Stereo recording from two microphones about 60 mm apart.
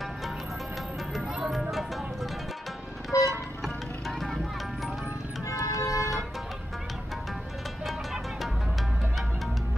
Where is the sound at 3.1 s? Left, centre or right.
Left.